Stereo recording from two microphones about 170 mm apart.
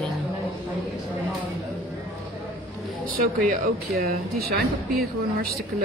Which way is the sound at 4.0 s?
60° right (ahead or behind).